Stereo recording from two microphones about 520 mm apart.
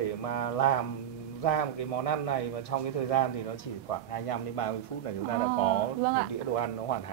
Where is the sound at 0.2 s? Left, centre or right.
Left.